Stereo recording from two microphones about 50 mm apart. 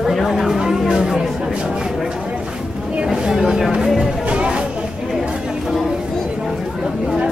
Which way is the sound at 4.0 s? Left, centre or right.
Centre.